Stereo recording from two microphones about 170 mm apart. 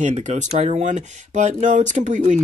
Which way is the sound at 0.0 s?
45° right (ahead or behind).